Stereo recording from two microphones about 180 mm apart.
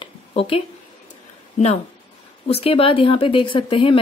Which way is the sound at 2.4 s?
35° left (ahead or behind).